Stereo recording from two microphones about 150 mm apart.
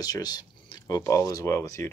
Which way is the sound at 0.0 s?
25° left (ahead or behind).